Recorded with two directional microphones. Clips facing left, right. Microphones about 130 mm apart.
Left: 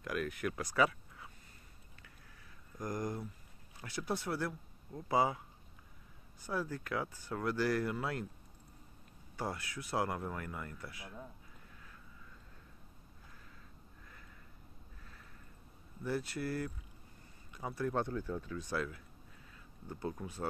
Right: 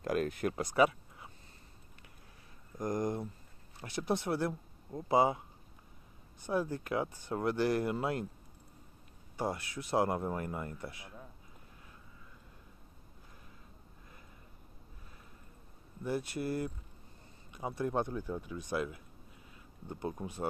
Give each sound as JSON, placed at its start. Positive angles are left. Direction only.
{"t": 0.0, "sound": "speech", "side_deg": -30}
{"t": 2.8, "sound": "speech", "side_deg": -25}
{"t": 6.4, "sound": "speech", "side_deg": -20}
{"t": 9.4, "sound": "speech", "side_deg": -20}
{"t": 16.0, "sound": "speech", "side_deg": -20}